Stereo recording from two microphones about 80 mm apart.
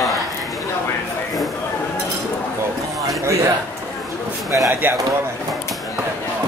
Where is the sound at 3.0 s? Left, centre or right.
Right.